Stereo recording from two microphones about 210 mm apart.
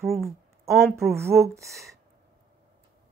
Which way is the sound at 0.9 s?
10° right (ahead or behind).